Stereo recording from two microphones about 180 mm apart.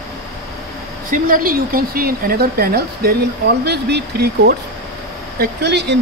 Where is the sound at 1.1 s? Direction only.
50° right (ahead or behind).